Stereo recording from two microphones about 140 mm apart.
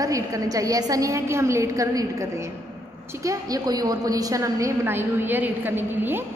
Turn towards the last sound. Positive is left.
turn(degrees=-15)  # may be behind; listen again after turning